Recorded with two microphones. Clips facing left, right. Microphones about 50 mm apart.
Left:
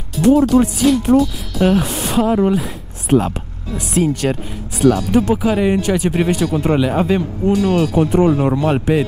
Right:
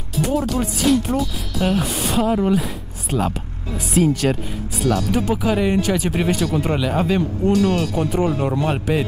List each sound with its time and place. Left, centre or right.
0.3 s speech: centre
3.1 s speech: left
3.7 s speech: centre